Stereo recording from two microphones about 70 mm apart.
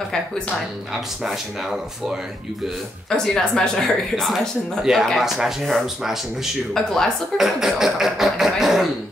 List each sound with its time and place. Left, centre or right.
1.2 s speech: centre
3.1 s speech: centre